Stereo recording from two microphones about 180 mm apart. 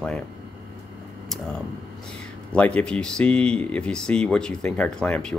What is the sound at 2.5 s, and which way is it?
Speech, 5° left (ahead or behind).